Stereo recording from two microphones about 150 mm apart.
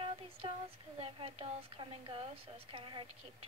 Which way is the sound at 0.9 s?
40° right (ahead or behind).